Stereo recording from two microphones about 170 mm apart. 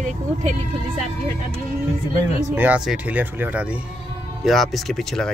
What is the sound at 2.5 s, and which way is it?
Speech, 10° right (ahead or behind).